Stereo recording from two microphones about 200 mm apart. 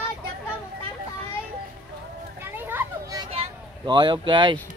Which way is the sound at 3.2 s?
25° right (ahead or behind).